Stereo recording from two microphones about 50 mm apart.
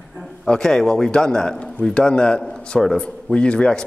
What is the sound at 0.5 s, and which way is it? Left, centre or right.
A man's voice, centre.